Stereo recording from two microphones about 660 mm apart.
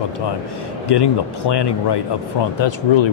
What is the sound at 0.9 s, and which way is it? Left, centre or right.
Speech, left.